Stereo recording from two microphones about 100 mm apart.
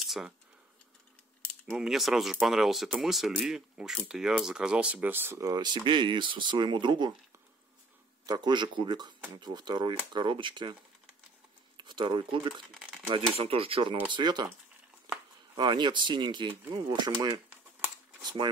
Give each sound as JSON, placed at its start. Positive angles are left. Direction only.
{"t": 0.0, "sound": "a sound", "side_deg": 0}
{"t": 1.7, "sound": "speech", "side_deg": -5}
{"t": 5.4, "sound": "speech", "side_deg": -40}
{"t": 8.3, "sound": "speech", "side_deg": -45}
{"t": 11.7, "sound": "a sound", "side_deg": -50}
{"t": 12.2, "sound": "speech", "side_deg": -50}
{"t": 13.1, "sound": "speech", "side_deg": -70}
{"t": 15.5, "sound": "speech", "side_deg": -45}